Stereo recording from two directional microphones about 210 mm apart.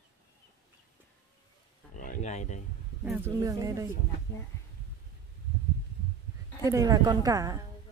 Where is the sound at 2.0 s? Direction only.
35° left (ahead or behind).